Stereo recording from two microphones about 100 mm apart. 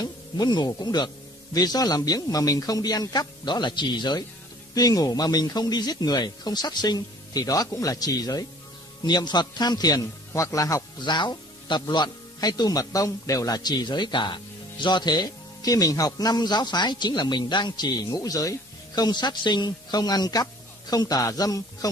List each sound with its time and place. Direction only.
0.0 s speech: 45° left (ahead or behind)
11.0 s speech: 50° left (ahead or behind)